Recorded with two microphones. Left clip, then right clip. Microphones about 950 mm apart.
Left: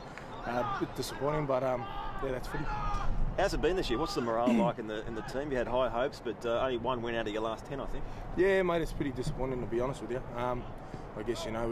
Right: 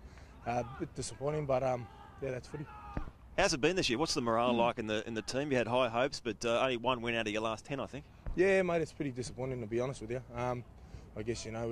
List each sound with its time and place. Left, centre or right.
0.5 s speech: right
3.3 s speech: right
8.4 s speech: right